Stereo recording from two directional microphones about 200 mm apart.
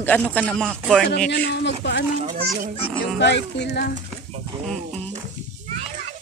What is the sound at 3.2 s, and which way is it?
Speech, 60° left (ahead or behind).